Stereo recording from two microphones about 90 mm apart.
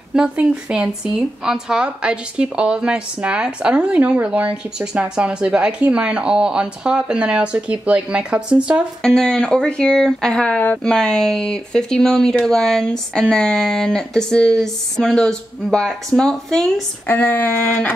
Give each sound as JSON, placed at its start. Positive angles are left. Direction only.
{"t": 0.1, "sound": "speech", "side_deg": -10}
{"t": 9.0, "sound": "speech", "side_deg": 5}
{"t": 17.1, "sound": "speech", "side_deg": 20}